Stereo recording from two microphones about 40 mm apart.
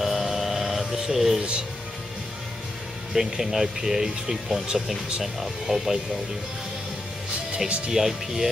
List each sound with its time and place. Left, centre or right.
0.0 s a sound: centre
3.1 s speech: centre
7.5 s speech: right
7.9 s speech: centre